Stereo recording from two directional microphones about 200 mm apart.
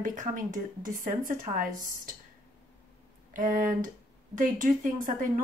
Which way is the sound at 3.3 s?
40° right (ahead or behind).